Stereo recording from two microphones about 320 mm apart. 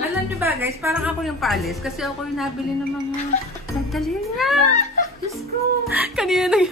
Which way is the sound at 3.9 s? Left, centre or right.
Centre.